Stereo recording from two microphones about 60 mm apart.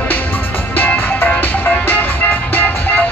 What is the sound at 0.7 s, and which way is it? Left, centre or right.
Music, left.